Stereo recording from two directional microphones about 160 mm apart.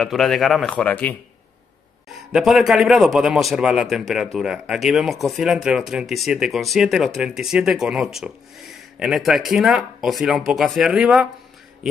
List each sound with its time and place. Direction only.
0.0 s speech: centre (ahead or behind)